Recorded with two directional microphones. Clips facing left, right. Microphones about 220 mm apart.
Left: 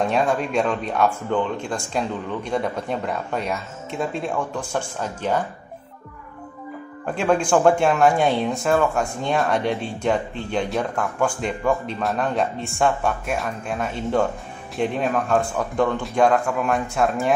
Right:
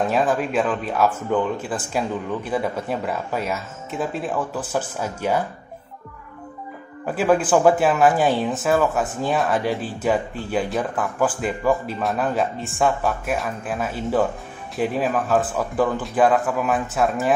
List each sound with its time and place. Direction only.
0.0 s speech: centre (ahead or behind)
7.1 s speech: 5° right (ahead or behind)